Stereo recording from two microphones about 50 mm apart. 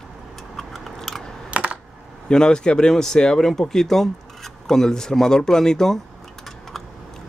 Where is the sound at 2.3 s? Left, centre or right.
Centre.